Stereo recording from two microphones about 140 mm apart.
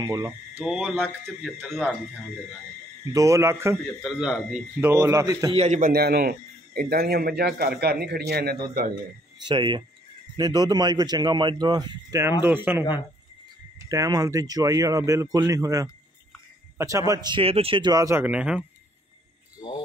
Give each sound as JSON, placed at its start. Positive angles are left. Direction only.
{"t": 0.0, "sound": "speech", "side_deg": -25}
{"t": 0.6, "sound": "speech", "side_deg": -5}
{"t": 1.2, "sound": "a man's voice", "side_deg": 0}
{"t": 3.1, "sound": "speech", "side_deg": -25}
{"t": 3.7, "sound": "a man's voice", "side_deg": 0}
{"t": 4.7, "sound": "speech", "side_deg": -20}
{"t": 5.5, "sound": "a man's voice", "side_deg": -50}
{"t": 5.8, "sound": "speech", "side_deg": -90}
{"t": 8.8, "sound": "speech", "side_deg": -90}
{"t": 9.5, "sound": "speech", "side_deg": -35}
{"t": 13.8, "sound": "speech", "side_deg": -25}
{"t": 18.2, "sound": "speech", "side_deg": -10}